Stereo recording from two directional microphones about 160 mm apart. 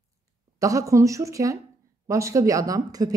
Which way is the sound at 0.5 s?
20° right (ahead or behind).